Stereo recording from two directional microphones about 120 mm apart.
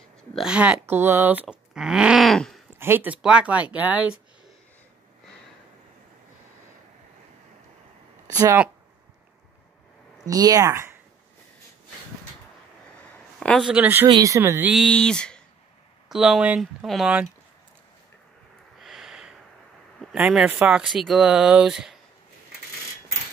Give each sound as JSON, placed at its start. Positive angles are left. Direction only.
{"t": 0.3, "sound": "speech", "side_deg": -5}
{"t": 2.8, "sound": "speech", "side_deg": -15}
{"t": 8.4, "sound": "speech", "side_deg": -20}
{"t": 10.2, "sound": "speech", "side_deg": -30}
{"t": 13.4, "sound": "a sound", "side_deg": 5}
{"t": 13.7, "sound": "speech", "side_deg": -10}
{"t": 14.0, "sound": "speech", "side_deg": -30}
{"t": 14.7, "sound": "speech", "side_deg": 5}
{"t": 16.1, "sound": "speech", "side_deg": -5}
{"t": 18.8, "sound": "snort", "side_deg": 0}
{"t": 20.0, "sound": "speech", "side_deg": 0}